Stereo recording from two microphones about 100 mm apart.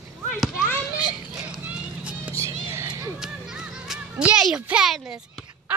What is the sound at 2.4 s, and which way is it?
Music, 30° right (ahead or behind).